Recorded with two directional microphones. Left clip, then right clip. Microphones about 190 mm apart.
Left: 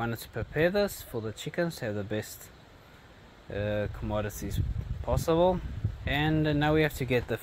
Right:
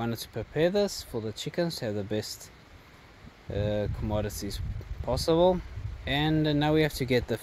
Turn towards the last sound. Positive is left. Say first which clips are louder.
# right 2 dB
turn(degrees=-35)  # may be behind; listen again after turning